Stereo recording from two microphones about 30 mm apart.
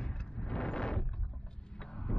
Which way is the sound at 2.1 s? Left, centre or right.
Left.